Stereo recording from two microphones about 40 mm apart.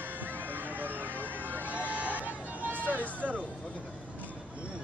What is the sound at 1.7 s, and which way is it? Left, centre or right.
Vehicle, right.